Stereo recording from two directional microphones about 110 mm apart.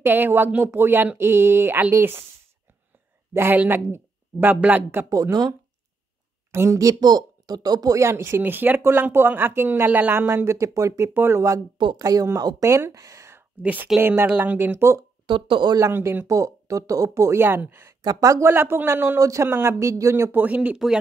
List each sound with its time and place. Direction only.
0.0 s speech: 20° right (ahead or behind)
3.3 s speech: 20° right (ahead or behind)
5.1 s a woman's voice: 35° right (ahead or behind)
11.8 s a woman's voice: 40° right (ahead or behind)
13.6 s speech: 15° right (ahead or behind)
15.2 s speech: 50° right (ahead or behind)
15.9 s speech: 20° right (ahead or behind)
18.0 s speech: 30° right (ahead or behind); by 20.8 s 15° right (ahead or behind)